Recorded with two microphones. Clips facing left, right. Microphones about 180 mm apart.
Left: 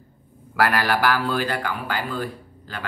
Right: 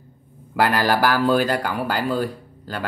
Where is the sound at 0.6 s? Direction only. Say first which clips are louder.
Right 2 dB; 30° right (ahead or behind).